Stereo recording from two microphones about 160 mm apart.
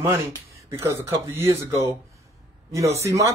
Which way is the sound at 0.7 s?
15° right (ahead or behind).